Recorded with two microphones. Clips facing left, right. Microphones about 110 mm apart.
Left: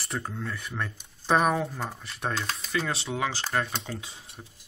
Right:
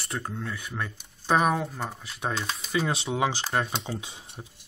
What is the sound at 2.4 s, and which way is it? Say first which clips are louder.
Speech: right 2 dB; 15° right (ahead or behind).